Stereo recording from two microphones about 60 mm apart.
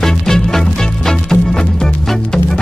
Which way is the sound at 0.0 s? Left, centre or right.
Centre.